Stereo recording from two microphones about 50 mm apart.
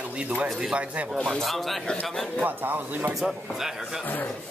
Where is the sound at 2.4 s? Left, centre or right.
Right.